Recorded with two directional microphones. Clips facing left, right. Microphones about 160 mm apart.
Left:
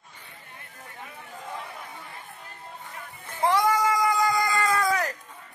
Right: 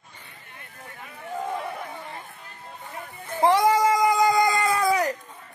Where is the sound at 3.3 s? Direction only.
25° right (ahead or behind).